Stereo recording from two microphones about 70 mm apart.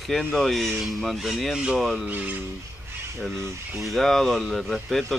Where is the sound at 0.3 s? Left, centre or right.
Centre.